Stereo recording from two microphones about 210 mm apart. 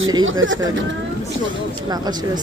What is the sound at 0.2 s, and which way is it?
Speech, 65° right (ahead or behind).